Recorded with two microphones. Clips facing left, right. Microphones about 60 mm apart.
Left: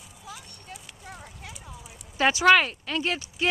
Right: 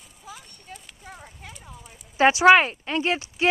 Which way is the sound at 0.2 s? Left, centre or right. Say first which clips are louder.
Even; centre.